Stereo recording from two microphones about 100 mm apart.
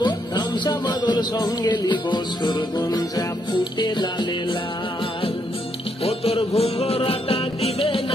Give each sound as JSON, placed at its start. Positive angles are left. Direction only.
{"t": 0.0, "sound": "music", "side_deg": 45}
{"t": 6.0, "sound": "music", "side_deg": 80}